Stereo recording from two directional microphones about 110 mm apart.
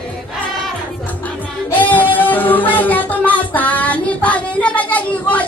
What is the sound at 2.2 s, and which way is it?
Music, 15° left (ahead or behind).